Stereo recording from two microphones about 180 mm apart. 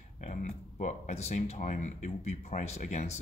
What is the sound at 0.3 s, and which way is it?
Speech, 40° left (ahead or behind).